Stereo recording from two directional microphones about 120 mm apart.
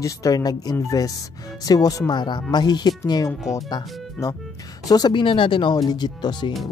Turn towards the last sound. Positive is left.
turn(degrees=35)  # may be behind; listen again after turning